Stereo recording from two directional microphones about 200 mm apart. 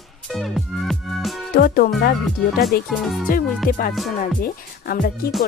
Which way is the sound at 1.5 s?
45° left (ahead or behind).